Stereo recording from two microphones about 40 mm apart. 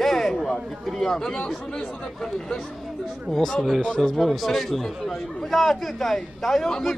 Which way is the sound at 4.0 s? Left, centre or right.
Centre.